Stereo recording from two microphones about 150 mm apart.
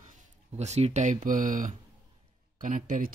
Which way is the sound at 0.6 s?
45° right (ahead or behind).